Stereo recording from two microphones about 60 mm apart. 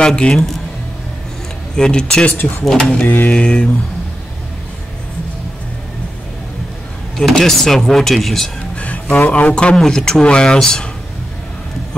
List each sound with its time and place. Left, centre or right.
0.0 s speech: centre
1.8 s speech: centre
2.3 s speech: left
2.6 s speech: centre
3.1 s speech: left
7.2 s speech: centre
8.7 s a sound: left
9.1 s speech: left